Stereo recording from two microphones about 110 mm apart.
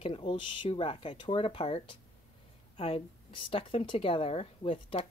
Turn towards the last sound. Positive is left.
turn(degrees=60)  # may be behind; listen again after turning